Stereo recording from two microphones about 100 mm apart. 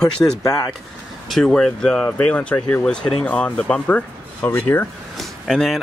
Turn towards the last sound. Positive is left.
turn(degrees=0)  # may be behind; listen again after turning